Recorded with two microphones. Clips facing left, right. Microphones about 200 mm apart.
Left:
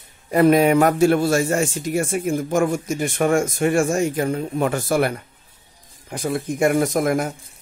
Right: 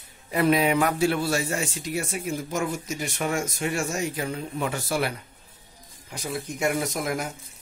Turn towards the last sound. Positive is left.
turn(degrees=50)  # may be behind; listen again after turning